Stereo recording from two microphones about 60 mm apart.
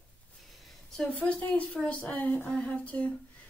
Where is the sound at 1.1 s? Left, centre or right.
Left.